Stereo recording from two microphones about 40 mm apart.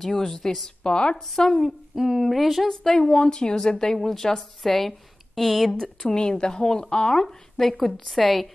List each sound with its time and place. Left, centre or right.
0.0 s speech: centre
0.8 s a woman's voice: left
2.0 s speech: centre
2.9 s a woman's voice: left
5.7 s speech: centre